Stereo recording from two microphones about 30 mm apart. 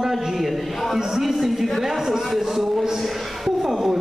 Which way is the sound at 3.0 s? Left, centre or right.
Centre.